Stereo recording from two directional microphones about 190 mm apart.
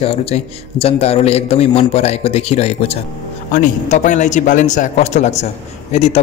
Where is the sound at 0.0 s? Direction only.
30° left (ahead or behind).